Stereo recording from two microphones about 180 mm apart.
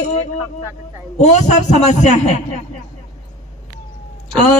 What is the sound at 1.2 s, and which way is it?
A man's voice, 40° left (ahead or behind).